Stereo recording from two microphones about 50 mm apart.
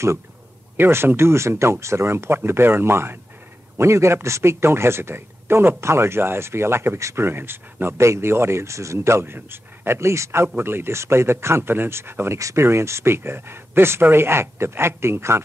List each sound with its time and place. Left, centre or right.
0.7 s speech: right
2.0 s speech: right
3.7 s speech: right
5.8 s speech: right
7.0 s speech: right
7.2 s speech: right
8.0 s speech: right
10.6 s speech: right
12.4 s speech: right
12.6 s speech: right